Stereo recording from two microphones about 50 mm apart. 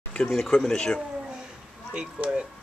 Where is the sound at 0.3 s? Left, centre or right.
Centre.